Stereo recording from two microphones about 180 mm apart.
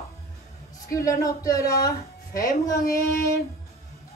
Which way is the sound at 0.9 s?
20° left (ahead or behind).